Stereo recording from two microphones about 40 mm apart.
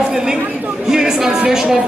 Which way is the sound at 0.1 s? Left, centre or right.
Centre.